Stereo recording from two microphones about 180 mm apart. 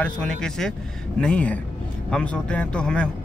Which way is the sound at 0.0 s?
5° left (ahead or behind).